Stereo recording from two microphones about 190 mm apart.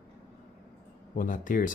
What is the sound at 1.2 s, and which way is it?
Speech, 45° left (ahead or behind).